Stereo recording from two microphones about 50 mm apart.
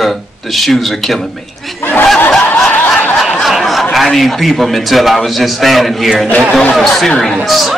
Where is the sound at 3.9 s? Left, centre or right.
Centre.